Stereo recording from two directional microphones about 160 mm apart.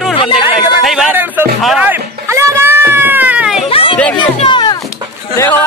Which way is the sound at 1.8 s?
15° right (ahead or behind).